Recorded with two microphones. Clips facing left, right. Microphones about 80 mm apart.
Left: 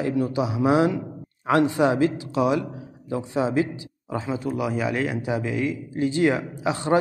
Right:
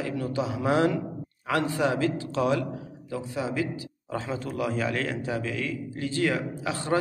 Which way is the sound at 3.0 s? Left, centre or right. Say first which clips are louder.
Left 7 dB; left.